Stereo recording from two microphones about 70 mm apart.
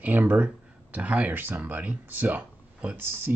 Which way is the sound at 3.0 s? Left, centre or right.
Right.